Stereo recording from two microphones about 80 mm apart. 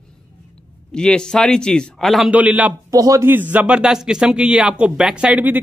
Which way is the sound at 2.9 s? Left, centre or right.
Right.